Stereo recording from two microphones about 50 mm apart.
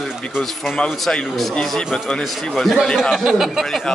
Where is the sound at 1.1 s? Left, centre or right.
Centre.